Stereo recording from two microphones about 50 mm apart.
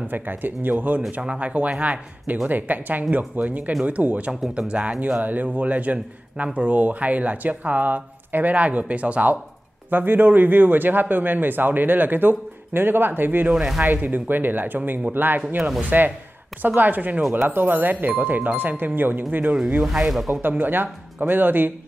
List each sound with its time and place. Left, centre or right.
0.1 s a man's voice: right
9.8 s a man's voice: right
13.5 s speech: centre
13.8 s a man's voice: right
19.8 s speech: centre
20.4 s a man's voice: right